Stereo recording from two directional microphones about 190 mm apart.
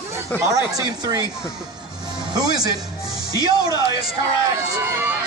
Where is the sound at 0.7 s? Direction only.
20° right (ahead or behind).